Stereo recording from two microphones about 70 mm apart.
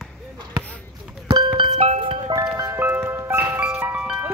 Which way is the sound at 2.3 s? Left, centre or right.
Right.